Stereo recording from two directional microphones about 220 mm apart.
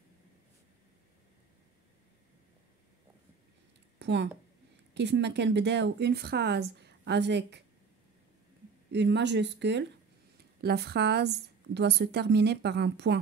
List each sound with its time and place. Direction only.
4.0 s a sound: 50° right (ahead or behind)
4.9 s speech: 50° right (ahead or behind)
8.9 s speech: 50° right (ahead or behind)